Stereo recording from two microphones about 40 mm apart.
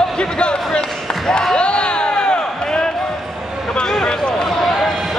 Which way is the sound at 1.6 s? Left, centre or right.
Left.